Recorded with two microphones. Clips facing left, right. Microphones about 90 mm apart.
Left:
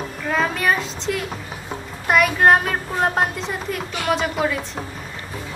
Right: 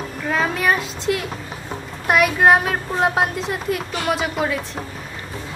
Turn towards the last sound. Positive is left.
turn(degrees=0)  # may be behind; listen again after turning